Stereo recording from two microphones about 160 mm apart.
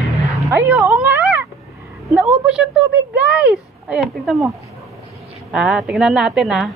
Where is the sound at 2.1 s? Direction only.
5° right (ahead or behind).